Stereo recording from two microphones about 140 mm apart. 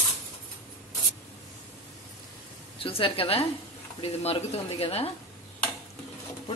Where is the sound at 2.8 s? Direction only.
40° left (ahead or behind).